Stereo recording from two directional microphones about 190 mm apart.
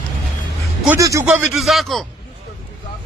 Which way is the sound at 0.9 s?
15° right (ahead or behind).